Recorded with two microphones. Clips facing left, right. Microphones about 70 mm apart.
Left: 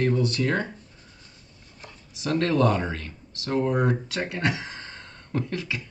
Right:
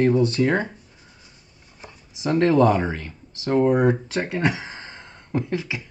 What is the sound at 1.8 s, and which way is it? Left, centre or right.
Speech, right.